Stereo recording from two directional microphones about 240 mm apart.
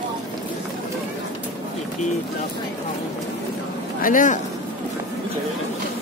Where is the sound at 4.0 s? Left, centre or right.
Left.